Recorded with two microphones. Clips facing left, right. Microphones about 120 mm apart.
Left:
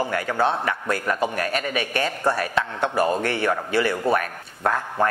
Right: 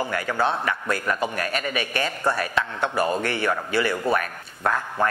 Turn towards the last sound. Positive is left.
turn(degrees=35)  # may be behind; listen again after turning